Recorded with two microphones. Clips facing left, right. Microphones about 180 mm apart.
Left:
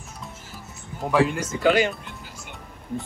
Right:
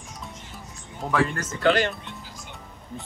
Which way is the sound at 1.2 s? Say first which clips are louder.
Right 1 dB; 5° left (ahead or behind).